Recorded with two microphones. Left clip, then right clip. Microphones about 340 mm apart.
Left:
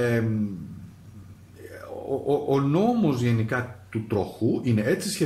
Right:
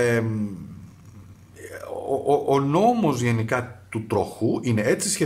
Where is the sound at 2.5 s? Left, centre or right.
Right.